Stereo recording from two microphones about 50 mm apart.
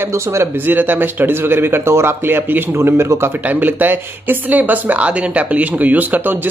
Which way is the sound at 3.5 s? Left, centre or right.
Right.